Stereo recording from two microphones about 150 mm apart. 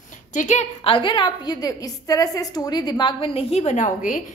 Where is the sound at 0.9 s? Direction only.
35° left (ahead or behind); by 4.2 s 55° left (ahead or behind).